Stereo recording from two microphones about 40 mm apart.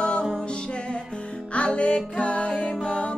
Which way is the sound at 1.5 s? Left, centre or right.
Left.